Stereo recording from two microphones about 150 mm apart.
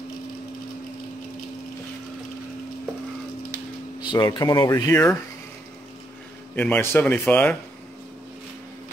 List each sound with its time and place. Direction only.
4.0 s speech: 30° left (ahead or behind)
6.5 s a man's voice: 10° left (ahead or behind)